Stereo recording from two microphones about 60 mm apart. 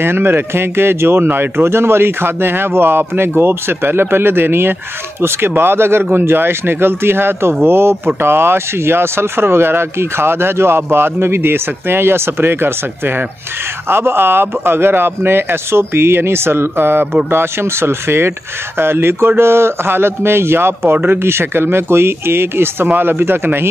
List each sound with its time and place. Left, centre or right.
0.0 s speech: right